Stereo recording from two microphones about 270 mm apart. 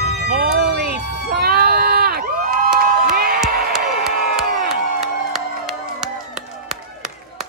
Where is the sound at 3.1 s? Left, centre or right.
Right.